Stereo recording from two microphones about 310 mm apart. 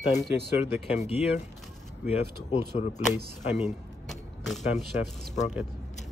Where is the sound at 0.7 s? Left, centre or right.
Centre.